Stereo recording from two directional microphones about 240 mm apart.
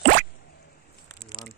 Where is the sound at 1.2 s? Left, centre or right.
Centre.